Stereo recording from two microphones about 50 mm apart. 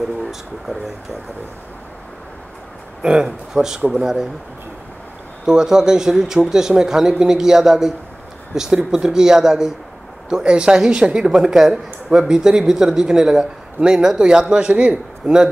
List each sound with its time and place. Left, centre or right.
3.0 s a man's voice: centre
5.4 s a man's voice: centre
11.5 s a man's voice: centre; by 15.4 s right